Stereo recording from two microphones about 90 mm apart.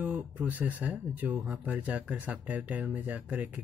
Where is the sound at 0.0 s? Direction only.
20° right (ahead or behind).